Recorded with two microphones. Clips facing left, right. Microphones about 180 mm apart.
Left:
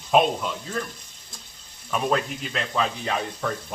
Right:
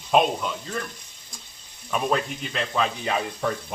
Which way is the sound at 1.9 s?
Centre (ahead or behind).